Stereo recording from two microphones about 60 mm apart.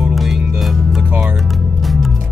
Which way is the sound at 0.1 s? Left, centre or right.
Centre.